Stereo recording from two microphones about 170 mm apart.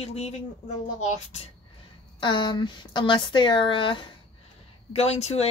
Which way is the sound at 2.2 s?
25° left (ahead or behind).